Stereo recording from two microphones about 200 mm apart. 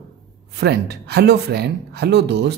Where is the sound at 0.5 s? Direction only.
55° right (ahead or behind).